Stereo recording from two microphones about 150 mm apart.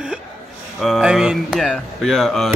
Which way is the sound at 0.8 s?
Centre (ahead or behind).